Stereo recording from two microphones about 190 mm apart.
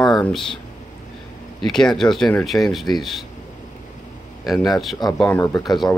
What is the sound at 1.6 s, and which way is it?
Speech, centre (ahead or behind).